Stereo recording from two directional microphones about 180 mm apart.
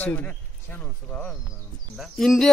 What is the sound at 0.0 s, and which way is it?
Speech, 10° left (ahead or behind).